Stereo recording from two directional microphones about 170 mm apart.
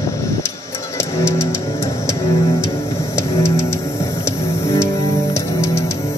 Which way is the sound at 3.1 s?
15° left (ahead or behind).